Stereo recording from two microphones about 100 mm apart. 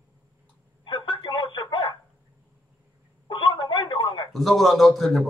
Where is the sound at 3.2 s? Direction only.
50° left (ahead or behind).